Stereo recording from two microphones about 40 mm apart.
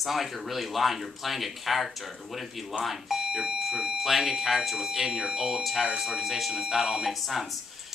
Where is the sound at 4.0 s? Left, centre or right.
Centre.